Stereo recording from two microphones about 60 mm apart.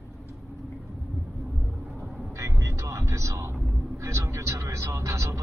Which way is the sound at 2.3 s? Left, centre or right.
Right.